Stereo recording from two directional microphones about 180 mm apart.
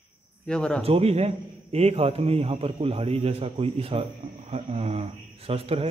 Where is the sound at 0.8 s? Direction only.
35° right (ahead or behind).